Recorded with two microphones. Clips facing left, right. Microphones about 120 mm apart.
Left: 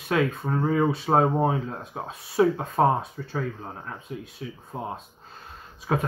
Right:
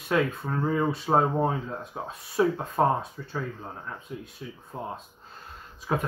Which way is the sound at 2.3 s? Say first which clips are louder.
Left 3 dB; 25° left (ahead or behind).